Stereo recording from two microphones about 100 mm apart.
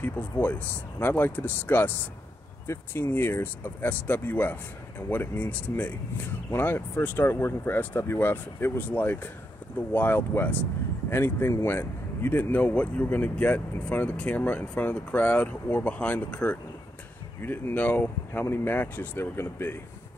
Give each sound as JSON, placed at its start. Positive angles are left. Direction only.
{"t": 0.0, "sound": "speech", "side_deg": 15}